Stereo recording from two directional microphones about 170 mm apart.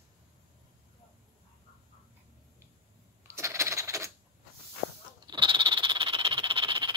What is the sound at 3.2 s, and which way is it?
Coin, 15° right (ahead or behind).